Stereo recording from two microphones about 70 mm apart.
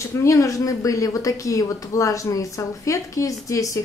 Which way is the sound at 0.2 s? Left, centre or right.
Left.